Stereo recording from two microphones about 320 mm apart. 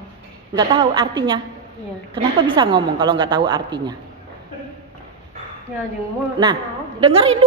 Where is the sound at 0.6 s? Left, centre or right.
Centre.